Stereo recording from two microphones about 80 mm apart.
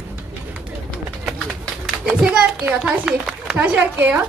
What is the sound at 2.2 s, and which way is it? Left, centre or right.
A child's voice, centre.